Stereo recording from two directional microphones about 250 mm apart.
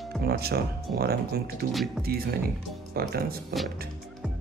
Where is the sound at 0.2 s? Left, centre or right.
Right.